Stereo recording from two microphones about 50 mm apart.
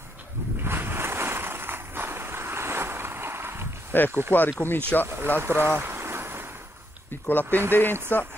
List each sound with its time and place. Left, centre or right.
0.6 s a sound: right
3.9 s speech: left
5.0 s speech: right
5.4 s vehicle: right
7.4 s speech: right
8.1 s speech: left